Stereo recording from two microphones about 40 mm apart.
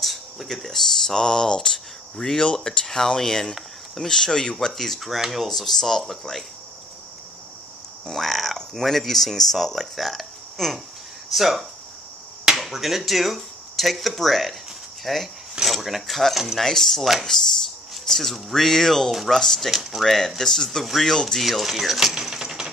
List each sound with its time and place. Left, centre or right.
0.0 s speech: centre
1.1 s speech: centre
4.7 s speech: centre
8.1 s speech: centre
16.5 s speech: centre
19.7 s speech: centre
20.1 s speech: centre
22.2 s typewriter: centre